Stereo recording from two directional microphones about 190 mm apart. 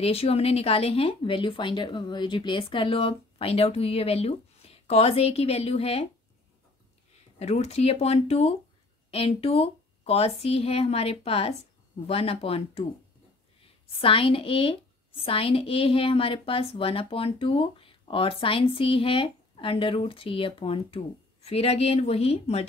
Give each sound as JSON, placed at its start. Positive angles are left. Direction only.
{"t": 0.0, "sound": "speech", "side_deg": 30}
{"t": 7.3, "sound": "speech", "side_deg": 35}
{"t": 13.8, "sound": "a woman's voice", "side_deg": 30}